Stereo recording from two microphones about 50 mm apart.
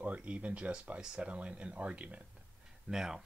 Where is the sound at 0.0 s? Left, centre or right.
Right.